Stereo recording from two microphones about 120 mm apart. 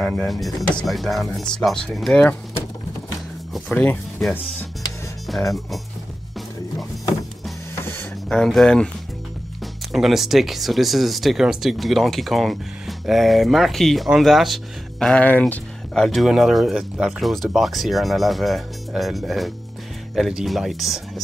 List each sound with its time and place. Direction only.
0.0 s speech: 5° left (ahead or behind)
3.7 s speech: 15° left (ahead or behind)
7.8 s a sound: 20° left (ahead or behind)
8.3 s speech: 5° left (ahead or behind)
9.9 s speech: centre (ahead or behind); by 15.6 s 15° left (ahead or behind)
15.9 s speech: centre (ahead or behind)